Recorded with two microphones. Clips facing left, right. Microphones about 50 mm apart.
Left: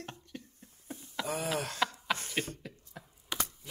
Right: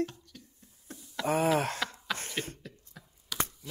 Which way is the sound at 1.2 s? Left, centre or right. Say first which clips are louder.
Right 5 dB; centre.